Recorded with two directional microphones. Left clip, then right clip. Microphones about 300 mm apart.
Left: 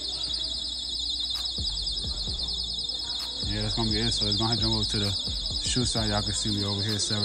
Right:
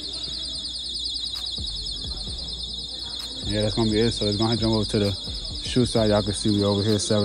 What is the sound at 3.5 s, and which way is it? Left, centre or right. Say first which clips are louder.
Speech: right 7 dB; centre.